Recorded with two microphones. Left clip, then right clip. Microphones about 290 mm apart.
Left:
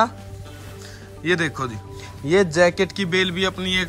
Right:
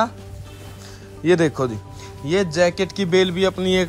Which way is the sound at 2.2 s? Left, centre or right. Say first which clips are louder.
Left 2 dB; centre.